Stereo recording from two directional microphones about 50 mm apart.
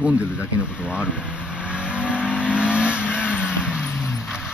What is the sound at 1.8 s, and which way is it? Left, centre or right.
Vehicle, right.